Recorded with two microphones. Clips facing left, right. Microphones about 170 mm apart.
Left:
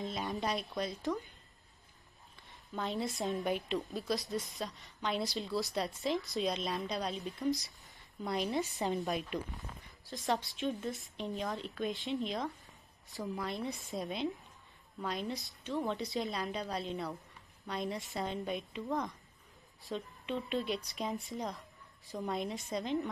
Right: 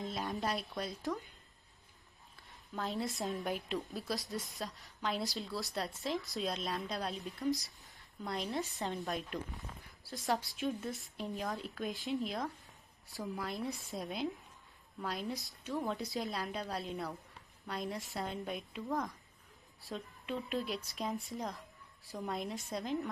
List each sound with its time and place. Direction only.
0.0 s a woman's voice: centre (ahead or behind)
2.7 s a woman's voice: centre (ahead or behind)